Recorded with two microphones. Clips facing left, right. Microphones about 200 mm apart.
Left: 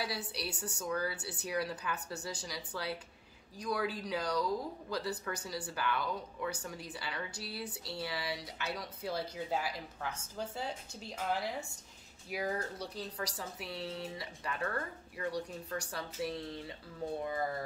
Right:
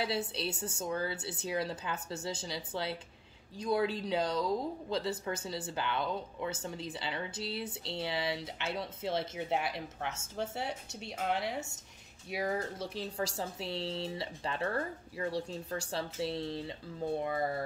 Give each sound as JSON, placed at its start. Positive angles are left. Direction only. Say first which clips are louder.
{"t": 0.0, "sound": "speech", "louder": "right 5 dB", "side_deg": -25}